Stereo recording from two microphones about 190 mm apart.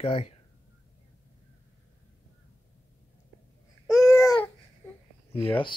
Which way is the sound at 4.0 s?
15° left (ahead or behind).